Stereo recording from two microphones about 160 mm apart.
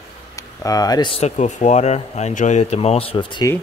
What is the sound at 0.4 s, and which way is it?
Speech, 20° left (ahead or behind).